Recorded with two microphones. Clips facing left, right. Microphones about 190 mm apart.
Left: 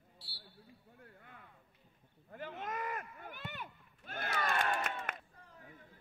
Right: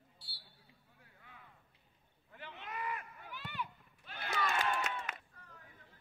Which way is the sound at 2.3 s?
45° left (ahead or behind).